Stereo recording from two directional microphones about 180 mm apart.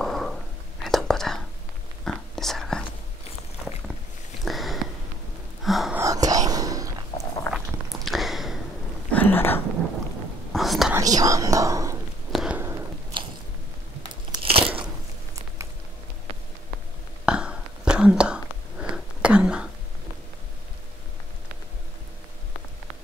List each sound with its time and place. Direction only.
0.0 s whispering: centre (ahead or behind)
4.5 s sniff: centre (ahead or behind)
5.6 s gasp: centre (ahead or behind)
5.9 s whispering: 20° right (ahead or behind)
7.5 s walk: centre (ahead or behind)
9.1 s a sound: 10° left (ahead or behind)
10.5 s whispering: centre (ahead or behind)
10.9 s whispering: 20° right (ahead or behind)
12.3 s a sound: 5° right (ahead or behind)
13.1 s biting: 25° right (ahead or behind)
14.3 s crackle: 30° right (ahead or behind)
15.3 s a sound: 15° right (ahead or behind)
17.3 s whispering: 5° right (ahead or behind)